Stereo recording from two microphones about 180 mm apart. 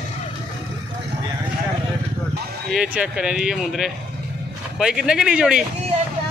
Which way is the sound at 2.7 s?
5° right (ahead or behind).